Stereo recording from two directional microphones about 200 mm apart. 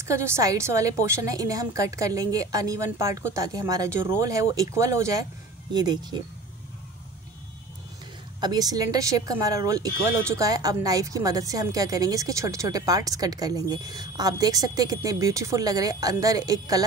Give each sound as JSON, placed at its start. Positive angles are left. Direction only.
{"t": 0.0, "sound": "a woman's voice", "side_deg": -15}
{"t": 8.4, "sound": "a woman's voice", "side_deg": -20}